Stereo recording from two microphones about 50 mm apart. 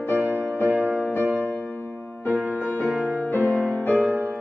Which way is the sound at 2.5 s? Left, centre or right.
Left.